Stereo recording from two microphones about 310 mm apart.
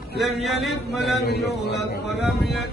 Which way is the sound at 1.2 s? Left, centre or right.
Left.